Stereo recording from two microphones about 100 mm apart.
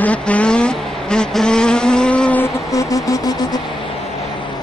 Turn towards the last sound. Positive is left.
turn(degrees=40)  # may be behind; listen again after turning